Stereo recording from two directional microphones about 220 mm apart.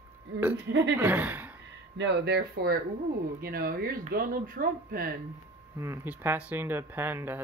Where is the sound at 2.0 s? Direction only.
50° right (ahead or behind).